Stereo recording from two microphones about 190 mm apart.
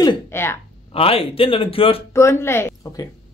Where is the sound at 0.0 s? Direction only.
15° left (ahead or behind).